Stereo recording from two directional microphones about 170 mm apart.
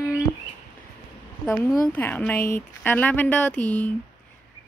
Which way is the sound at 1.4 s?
10° left (ahead or behind).